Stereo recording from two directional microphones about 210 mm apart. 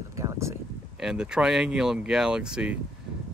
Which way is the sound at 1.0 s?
5° right (ahead or behind).